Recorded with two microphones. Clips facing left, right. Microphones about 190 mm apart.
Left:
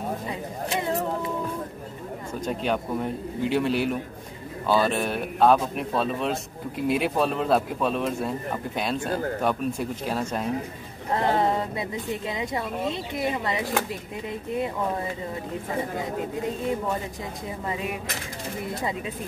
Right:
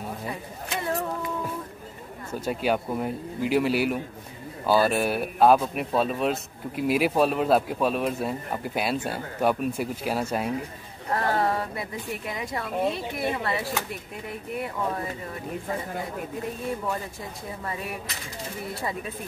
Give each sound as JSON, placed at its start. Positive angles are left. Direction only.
{"t": 2.4, "sound": "speech", "side_deg": -5}
{"t": 11.1, "sound": "speech", "side_deg": 20}
{"t": 17.6, "sound": "dishes", "side_deg": 20}
{"t": 18.7, "sound": "speech", "side_deg": 20}